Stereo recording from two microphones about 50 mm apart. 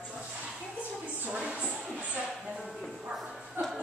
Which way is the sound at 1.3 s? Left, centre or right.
Right.